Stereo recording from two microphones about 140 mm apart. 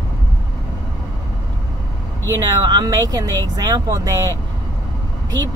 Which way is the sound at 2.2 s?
30° right (ahead or behind).